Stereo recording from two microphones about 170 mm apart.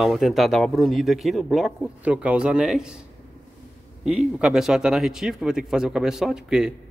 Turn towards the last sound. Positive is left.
turn(degrees=-5)  # may be behind; listen again after turning